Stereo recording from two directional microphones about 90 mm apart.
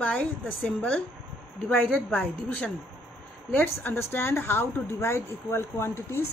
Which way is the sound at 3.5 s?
25° left (ahead or behind).